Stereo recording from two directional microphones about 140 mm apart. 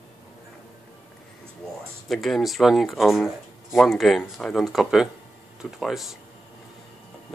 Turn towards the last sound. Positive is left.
turn(degrees=0)  # may be behind; listen again after turning